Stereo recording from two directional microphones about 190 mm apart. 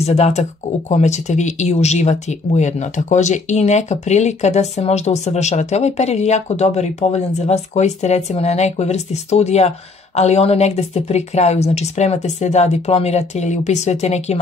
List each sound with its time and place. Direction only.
0.0 s speech: 35° left (ahead or behind)